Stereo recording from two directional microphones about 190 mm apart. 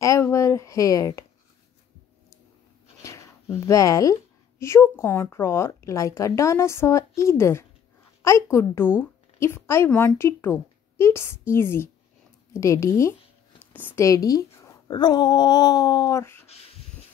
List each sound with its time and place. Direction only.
0.0 s speech: 15° left (ahead or behind)
3.0 s a woman's voice: 15° left (ahead or behind)